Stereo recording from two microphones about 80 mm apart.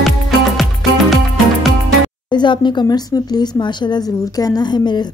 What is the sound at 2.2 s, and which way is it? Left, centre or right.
Speech, left.